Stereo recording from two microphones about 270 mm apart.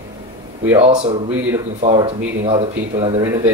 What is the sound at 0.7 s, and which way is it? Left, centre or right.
Speech, right.